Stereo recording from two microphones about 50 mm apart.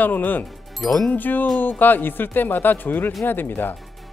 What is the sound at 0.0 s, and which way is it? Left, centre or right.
Speech, left.